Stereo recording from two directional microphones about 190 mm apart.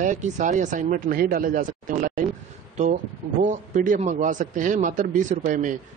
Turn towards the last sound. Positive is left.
turn(degrees=-45)  # may be behind; listen again after turning